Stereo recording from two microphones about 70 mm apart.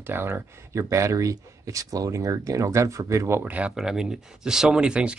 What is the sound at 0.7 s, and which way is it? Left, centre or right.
Speech, right.